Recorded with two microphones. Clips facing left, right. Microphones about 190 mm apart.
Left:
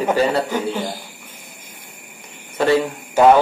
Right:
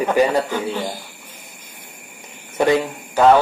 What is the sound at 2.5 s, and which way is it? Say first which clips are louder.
Cricket: even; 15° right (ahead or behind).